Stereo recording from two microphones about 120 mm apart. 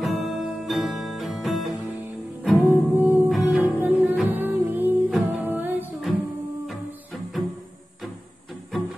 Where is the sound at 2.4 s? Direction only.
15° right (ahead or behind).